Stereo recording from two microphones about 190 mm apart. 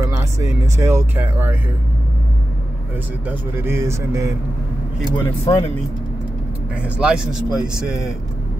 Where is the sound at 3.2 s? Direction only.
10° right (ahead or behind).